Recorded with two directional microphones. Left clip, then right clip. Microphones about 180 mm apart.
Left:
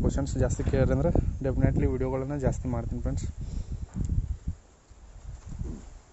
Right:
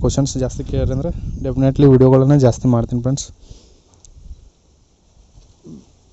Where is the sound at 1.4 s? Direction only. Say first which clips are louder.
Right 17 dB; 15° right (ahead or behind).